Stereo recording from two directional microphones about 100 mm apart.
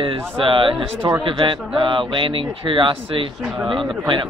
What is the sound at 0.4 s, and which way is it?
Speech, 60° right (ahead or behind).